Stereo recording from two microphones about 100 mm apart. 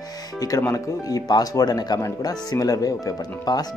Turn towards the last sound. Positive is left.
turn(degrees=40)  # may be behind; listen again after turning